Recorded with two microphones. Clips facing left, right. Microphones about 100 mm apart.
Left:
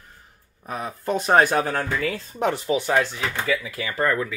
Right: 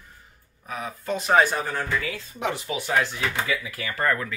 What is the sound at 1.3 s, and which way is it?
Speech, 60° left (ahead or behind).